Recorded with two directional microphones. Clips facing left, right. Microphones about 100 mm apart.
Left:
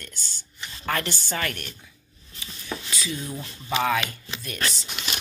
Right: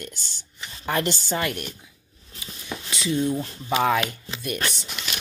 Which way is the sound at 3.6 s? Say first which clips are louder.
Right 2 dB; 10° right (ahead or behind).